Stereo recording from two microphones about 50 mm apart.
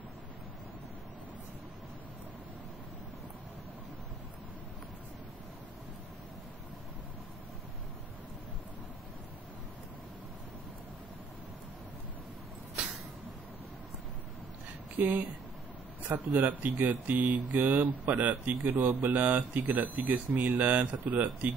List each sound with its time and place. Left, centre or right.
15.0 s speech: right
16.3 s speech: right